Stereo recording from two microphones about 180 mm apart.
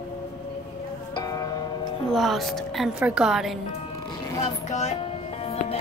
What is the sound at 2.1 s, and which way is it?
A woman's voice, centre (ahead or behind).